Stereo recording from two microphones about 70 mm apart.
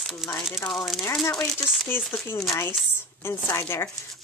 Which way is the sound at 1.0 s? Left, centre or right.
Left.